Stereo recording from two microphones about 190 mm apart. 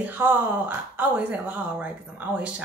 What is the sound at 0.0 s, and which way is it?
Speech, 10° right (ahead or behind).